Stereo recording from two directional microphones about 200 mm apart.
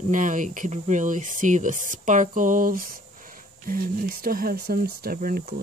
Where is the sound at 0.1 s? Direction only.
40° right (ahead or behind).